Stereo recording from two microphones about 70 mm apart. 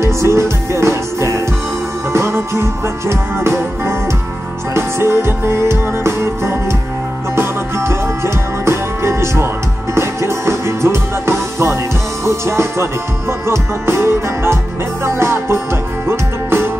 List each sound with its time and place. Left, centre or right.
0.0 s music: right